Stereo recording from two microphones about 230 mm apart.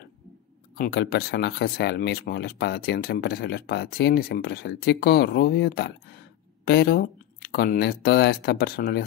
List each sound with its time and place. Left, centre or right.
0.7 s speech: left